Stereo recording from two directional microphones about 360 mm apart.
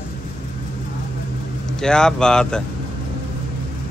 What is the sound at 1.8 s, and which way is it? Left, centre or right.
Speech, centre.